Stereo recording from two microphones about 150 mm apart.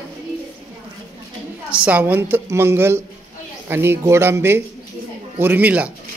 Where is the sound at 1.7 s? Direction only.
10° right (ahead or behind).